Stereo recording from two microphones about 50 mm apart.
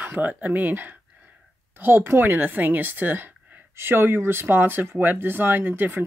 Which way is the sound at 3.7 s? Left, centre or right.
Right.